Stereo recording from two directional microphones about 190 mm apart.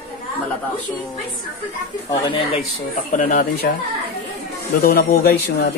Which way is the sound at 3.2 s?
45° left (ahead or behind).